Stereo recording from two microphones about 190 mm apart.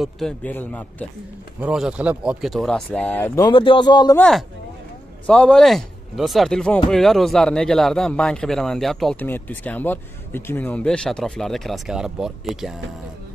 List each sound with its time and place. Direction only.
0.0 s a man's voice: 5° left (ahead or behind)
1.6 s a man's voice: 5° right (ahead or behind)
3.4 s speech: 25° left (ahead or behind)
4.2 s a man's voice: centre (ahead or behind)